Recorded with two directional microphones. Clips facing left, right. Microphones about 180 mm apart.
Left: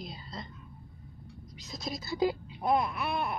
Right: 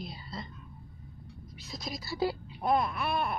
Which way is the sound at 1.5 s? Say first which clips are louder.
Left 2 dB; 20° left (ahead or behind).